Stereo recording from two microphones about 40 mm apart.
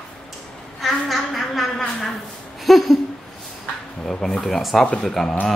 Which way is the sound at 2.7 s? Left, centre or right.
Centre.